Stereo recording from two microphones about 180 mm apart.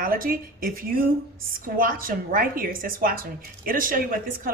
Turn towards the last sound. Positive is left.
turn(degrees=-50)  # may be behind; listen again after turning